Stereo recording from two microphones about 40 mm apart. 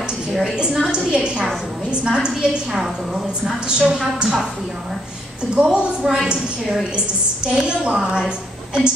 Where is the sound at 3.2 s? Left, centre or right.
Right.